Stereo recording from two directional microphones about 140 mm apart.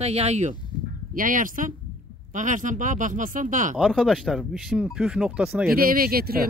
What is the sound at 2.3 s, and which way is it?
Speech, 65° right (ahead or behind).